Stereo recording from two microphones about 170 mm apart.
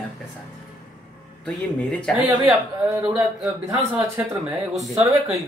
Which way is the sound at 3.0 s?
5° right (ahead or behind).